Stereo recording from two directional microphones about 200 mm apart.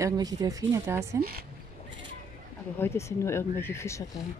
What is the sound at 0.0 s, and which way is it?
Speech, 15° right (ahead or behind).